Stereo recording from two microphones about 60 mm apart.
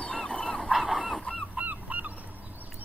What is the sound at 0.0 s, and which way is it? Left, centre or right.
Dog, centre.